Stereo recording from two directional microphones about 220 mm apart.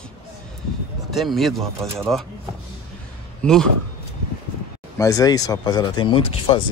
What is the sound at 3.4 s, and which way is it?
Speech, 5° left (ahead or behind).